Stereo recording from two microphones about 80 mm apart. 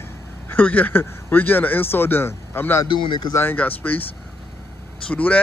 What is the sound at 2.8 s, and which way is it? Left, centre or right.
Speech, left.